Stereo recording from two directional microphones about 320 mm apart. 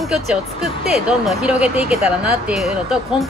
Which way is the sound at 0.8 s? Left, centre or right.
Centre.